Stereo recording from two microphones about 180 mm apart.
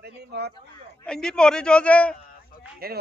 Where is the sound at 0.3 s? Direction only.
65° right (ahead or behind).